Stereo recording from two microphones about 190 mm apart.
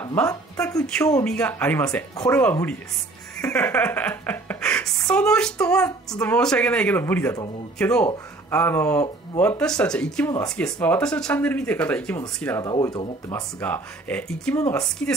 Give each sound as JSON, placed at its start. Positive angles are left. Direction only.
{"t": 0.0, "sound": "a woman's voice", "side_deg": 15}
{"t": 0.8, "sound": "speech", "side_deg": 5}
{"t": 12.7, "sound": "speech", "side_deg": 25}
{"t": 13.3, "sound": "speech", "side_deg": 10}
{"t": 14.6, "sound": "speech", "side_deg": 15}